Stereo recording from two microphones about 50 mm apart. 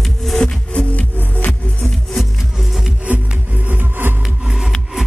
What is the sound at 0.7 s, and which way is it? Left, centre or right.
Music, left.